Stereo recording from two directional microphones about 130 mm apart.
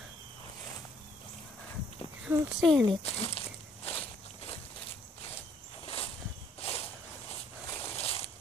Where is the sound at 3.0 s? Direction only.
50° left (ahead or behind).